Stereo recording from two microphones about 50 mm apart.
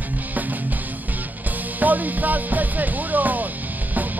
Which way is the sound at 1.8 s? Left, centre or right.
Right.